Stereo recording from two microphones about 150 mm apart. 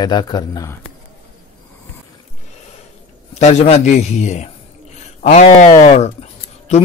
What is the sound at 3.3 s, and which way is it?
A man's voice, 45° left (ahead or behind).